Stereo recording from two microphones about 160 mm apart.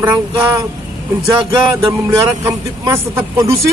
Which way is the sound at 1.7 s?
20° right (ahead or behind).